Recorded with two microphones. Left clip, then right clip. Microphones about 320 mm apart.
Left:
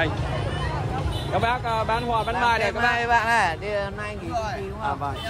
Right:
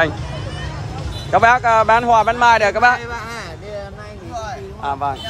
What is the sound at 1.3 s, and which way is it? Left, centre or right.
Speech, centre.